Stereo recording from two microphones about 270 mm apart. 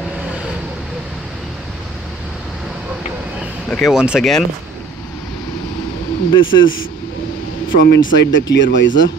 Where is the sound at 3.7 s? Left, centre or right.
Centre.